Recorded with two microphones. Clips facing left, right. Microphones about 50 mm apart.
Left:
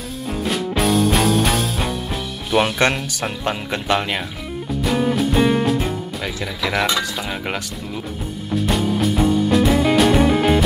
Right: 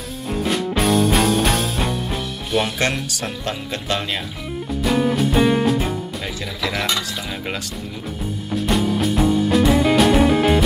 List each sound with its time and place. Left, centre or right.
0.4 s music: centre
2.9 s speech: centre
3.4 s speech: left
4.8 s music: centre
6.4 s speech: centre
8.5 s music: centre